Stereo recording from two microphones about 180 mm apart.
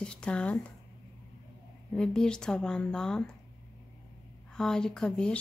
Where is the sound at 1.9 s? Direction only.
5° left (ahead or behind).